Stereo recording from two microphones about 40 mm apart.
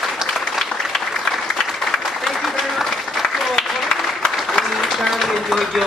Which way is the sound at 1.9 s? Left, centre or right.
Centre.